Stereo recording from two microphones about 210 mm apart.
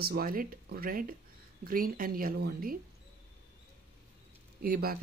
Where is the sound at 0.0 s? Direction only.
45° right (ahead or behind).